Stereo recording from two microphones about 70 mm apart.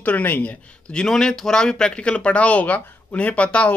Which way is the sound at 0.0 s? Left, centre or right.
Left.